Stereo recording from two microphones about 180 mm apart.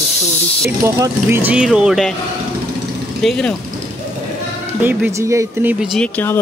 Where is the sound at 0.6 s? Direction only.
15° right (ahead or behind).